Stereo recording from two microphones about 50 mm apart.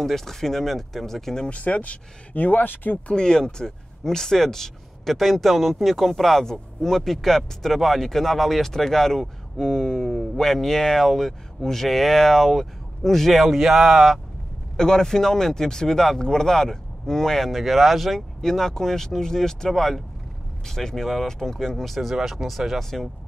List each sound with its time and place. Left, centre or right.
0.0 s speech: centre
1.5 s speech: left
3.1 s speech: centre
14.8 s speech: centre